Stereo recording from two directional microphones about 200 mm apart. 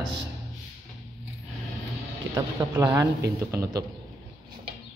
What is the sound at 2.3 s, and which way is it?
A man's voice, 20° right (ahead or behind).